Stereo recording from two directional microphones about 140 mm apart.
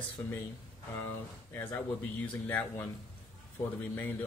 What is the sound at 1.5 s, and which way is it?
Speech, 15° left (ahead or behind).